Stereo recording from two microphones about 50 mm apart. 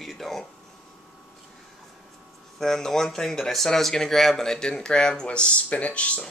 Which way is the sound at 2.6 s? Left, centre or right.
Centre.